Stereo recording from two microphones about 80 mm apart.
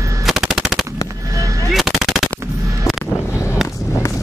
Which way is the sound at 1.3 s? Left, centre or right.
Right.